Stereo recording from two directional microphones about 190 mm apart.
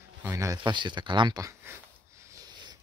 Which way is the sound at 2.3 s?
20° right (ahead or behind).